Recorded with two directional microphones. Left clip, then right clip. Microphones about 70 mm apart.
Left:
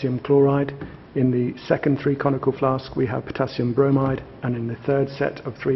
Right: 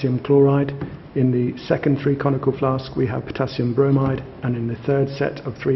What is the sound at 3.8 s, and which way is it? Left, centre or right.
Speech, centre.